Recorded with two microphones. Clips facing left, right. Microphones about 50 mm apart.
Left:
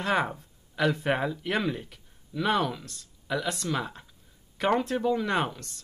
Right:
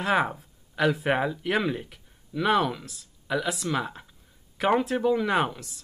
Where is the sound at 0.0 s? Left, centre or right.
Centre.